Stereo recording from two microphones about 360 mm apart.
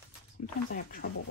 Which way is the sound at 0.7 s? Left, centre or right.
Left.